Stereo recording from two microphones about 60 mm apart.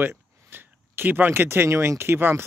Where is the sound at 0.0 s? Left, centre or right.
Right.